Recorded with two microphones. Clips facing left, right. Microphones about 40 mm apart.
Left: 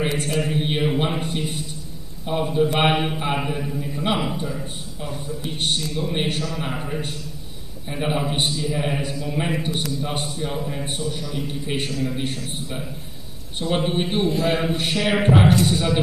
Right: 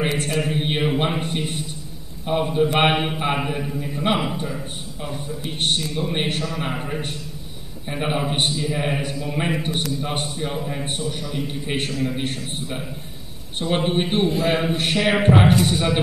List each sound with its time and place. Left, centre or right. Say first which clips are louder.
0.0 s a man's voice: right 1 dB; centre
5.0 s a man's voice: even; centre